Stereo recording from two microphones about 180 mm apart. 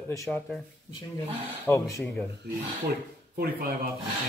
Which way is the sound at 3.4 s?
60° right (ahead or behind).